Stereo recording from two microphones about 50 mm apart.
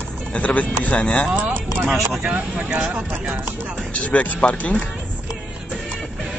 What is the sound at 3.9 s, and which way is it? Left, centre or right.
Speech, left.